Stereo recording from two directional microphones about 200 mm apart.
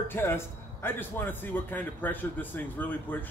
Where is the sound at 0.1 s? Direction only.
10° left (ahead or behind).